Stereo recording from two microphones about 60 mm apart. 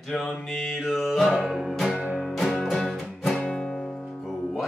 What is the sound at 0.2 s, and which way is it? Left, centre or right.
Music, centre.